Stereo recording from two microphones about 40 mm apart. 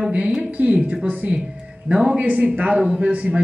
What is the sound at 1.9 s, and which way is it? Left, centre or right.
Speech, centre.